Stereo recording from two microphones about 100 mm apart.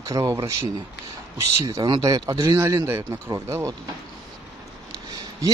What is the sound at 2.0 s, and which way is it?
Speech, 40° right (ahead or behind).